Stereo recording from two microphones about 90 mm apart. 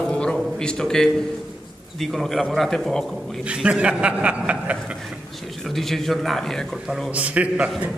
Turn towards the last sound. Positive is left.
turn(degrees=-15)  # may be behind; listen again after turning